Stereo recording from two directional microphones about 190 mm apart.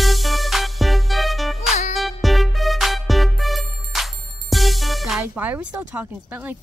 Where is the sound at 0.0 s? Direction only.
Centre (ahead or behind).